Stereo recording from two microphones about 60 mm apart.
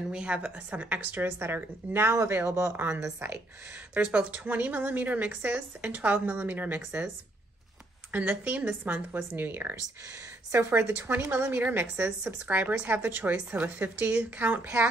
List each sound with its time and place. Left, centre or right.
0.1 s a woman's voice: centre; by 2.1 s right
2.1 s speech: right
3.9 s a woman's voice: right
8.1 s a woman's voice: right
11.0 s a woman's voice: right
13.7 s a woman's voice: right